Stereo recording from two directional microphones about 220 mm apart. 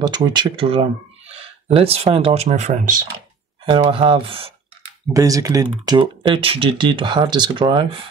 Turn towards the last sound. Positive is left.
turn(degrees=-20)  # may be behind; listen again after turning